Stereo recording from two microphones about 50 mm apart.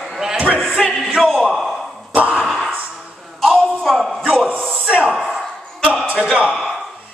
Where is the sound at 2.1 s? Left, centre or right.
Right.